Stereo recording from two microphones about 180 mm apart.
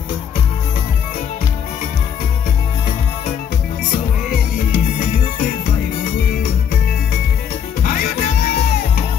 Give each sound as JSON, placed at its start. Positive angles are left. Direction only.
{"t": 4.6, "sound": "music", "side_deg": 45}
{"t": 7.8, "sound": "music", "side_deg": 50}